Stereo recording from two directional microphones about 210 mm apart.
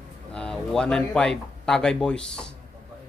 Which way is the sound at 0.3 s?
5° left (ahead or behind).